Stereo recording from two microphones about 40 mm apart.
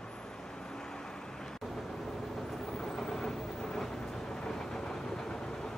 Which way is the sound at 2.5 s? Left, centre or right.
Centre.